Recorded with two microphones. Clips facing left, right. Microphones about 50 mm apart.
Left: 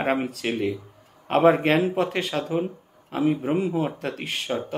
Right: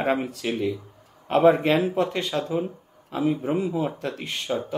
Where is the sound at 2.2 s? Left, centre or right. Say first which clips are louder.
Even; centre.